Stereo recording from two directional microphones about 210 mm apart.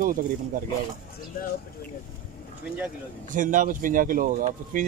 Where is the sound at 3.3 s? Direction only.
40° right (ahead or behind).